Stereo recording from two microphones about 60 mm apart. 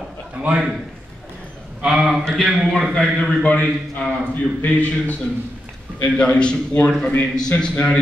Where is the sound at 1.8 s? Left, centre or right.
Centre.